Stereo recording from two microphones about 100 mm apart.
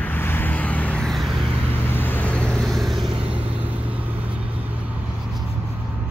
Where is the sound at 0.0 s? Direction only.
20° left (ahead or behind).